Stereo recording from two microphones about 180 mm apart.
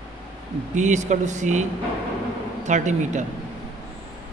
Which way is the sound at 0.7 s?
40° right (ahead or behind).